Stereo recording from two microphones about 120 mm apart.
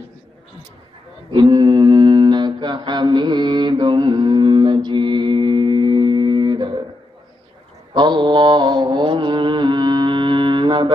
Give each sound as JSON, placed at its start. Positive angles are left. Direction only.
{"t": 1.3, "sound": "mantra", "side_deg": -40}
{"t": 7.9, "sound": "mantra", "side_deg": -40}